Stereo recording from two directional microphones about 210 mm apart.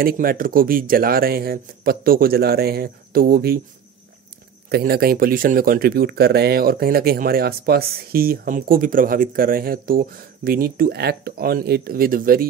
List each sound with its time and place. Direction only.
0.0 s speech: 45° right (ahead or behind)
4.6 s speech: 50° right (ahead or behind)